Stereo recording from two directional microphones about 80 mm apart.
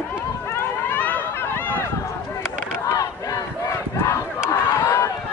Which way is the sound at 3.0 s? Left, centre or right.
Left.